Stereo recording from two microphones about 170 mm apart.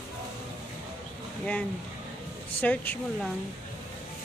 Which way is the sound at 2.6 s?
10° left (ahead or behind).